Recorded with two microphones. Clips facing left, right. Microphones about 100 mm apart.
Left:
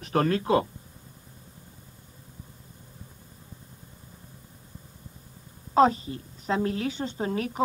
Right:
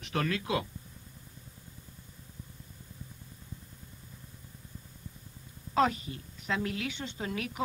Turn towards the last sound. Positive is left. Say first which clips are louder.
# left 7 dB
turn(degrees=35)  # may be behind; listen again after turning